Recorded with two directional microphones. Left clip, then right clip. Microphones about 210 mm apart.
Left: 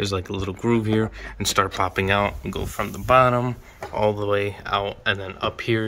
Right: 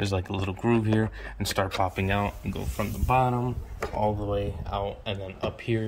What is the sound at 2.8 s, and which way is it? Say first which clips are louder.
Speech: left 8 dB; 40° left (ahead or behind).